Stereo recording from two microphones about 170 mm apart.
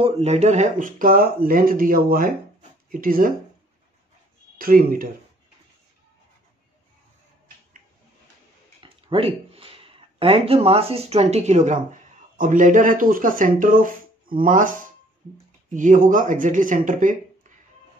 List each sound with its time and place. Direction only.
0.0 s speech: 40° right (ahead or behind); by 3.3 s 55° right (ahead or behind)
4.6 s speech: 55° right (ahead or behind)
8.8 s speech: 35° right (ahead or behind); by 17.5 s 50° right (ahead or behind)